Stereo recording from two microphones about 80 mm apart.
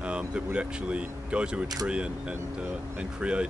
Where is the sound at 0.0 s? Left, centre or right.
Centre.